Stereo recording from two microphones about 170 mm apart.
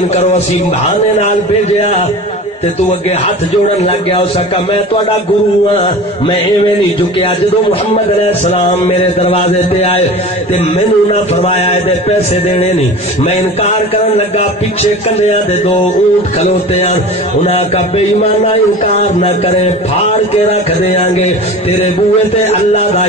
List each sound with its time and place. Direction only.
0.1 s a man's voice: 40° left (ahead or behind)
3.8 s a man's voice: 35° left (ahead or behind)
7.9 s a man's voice: 40° left (ahead or behind)